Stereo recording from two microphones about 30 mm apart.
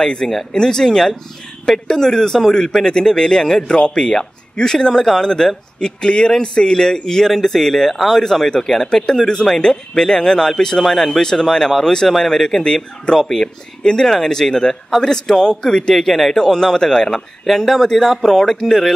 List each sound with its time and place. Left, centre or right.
0.0 s a man's voice: left
0.3 s speech: centre
0.6 s a man's voice: left
10.9 s speech: centre
11.8 s a man's voice: left
12.6 s a man's voice: left; by 16.5 s centre
16.5 s speech: left